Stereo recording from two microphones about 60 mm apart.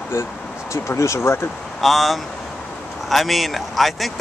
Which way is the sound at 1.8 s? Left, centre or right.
Centre.